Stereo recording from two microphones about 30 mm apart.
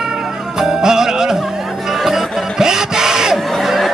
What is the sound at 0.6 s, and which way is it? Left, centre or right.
Music, centre.